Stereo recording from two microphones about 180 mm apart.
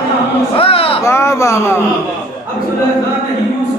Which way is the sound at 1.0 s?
15° left (ahead or behind).